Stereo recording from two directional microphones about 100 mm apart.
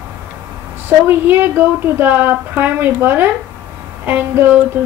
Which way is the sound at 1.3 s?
20° right (ahead or behind).